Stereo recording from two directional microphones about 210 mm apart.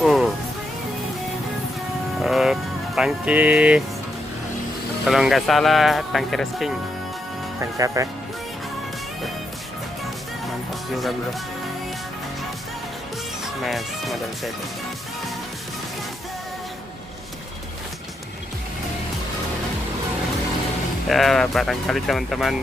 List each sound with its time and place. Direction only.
0.0 s music: centre (ahead or behind)
2.1 s music: centre (ahead or behind)
5.0 s speech: centre (ahead or behind)
7.7 s speech: 15° right (ahead or behind)
13.6 s speech: centre (ahead or behind)
21.1 s speech: centre (ahead or behind)